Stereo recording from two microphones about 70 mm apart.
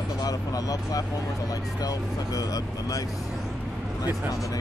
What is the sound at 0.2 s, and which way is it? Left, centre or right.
Speech, left.